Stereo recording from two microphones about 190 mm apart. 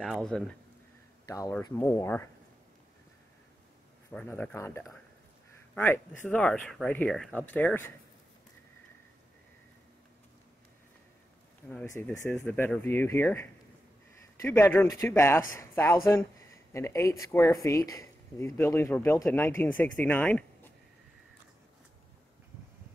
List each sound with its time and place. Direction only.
0.0 s speech: centre (ahead or behind)
1.2 s speech: 20° left (ahead or behind)
4.1 s speech: 10° left (ahead or behind)
11.7 s speech: 15° left (ahead or behind)